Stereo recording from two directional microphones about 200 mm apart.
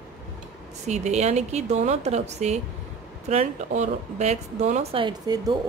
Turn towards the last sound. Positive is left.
turn(degrees=-20)  # may be behind; listen again after turning